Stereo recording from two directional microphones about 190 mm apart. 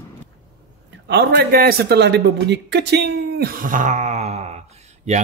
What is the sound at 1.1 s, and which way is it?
A woman's voice, 60° right (ahead or behind).